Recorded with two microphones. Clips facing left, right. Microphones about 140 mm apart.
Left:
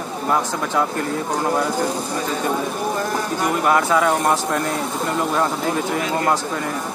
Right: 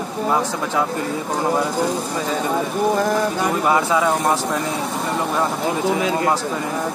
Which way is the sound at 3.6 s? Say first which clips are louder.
Left 1 dB; 10° right (ahead or behind).